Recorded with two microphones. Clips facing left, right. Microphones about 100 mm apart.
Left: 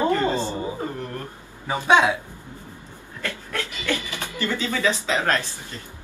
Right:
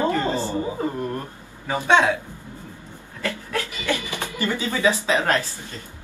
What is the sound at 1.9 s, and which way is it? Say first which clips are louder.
Speech: even; 15° left (ahead or behind).